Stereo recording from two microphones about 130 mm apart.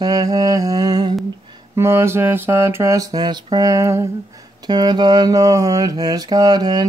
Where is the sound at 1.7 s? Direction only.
20° right (ahead or behind).